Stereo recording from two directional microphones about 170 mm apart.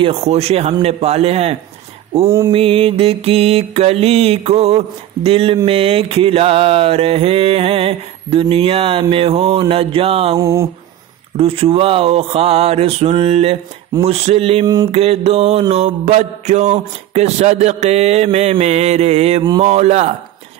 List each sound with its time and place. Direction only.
0.0 s mantra: 40° right (ahead or behind)
10.3 s speech: 20° right (ahead or behind)
11.3 s mantra: 35° right (ahead or behind)